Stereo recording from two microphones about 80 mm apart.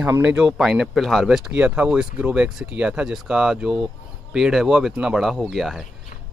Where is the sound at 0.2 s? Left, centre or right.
Centre.